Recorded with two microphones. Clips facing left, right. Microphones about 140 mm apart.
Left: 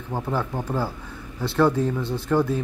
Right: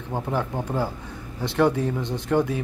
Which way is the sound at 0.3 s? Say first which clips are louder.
Even; 15° right (ahead or behind).